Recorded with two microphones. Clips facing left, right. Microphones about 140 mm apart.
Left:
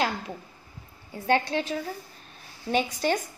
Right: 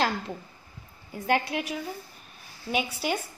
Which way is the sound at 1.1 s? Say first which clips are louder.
Left 2 dB; 25° left (ahead or behind).